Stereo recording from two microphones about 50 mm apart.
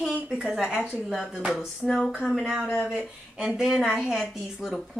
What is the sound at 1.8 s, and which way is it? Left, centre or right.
Speech, centre.